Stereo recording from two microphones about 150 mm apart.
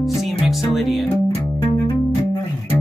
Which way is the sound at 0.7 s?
Centre (ahead or behind).